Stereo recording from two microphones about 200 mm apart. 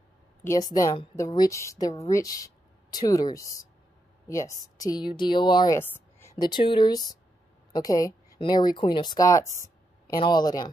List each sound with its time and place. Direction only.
0.4 s a woman's voice: 15° left (ahead or behind)
4.7 s speech: 20° left (ahead or behind)
5.8 s a woman's voice: 10° left (ahead or behind)